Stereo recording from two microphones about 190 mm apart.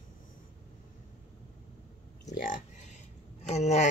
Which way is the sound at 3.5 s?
35° left (ahead or behind).